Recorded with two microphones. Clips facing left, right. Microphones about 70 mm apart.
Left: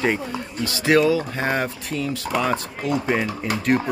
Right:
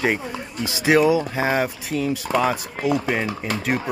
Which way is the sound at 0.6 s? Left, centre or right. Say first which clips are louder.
Right 1 dB; centre.